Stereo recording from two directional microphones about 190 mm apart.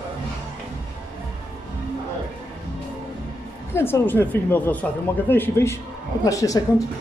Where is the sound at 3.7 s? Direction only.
15° left (ahead or behind).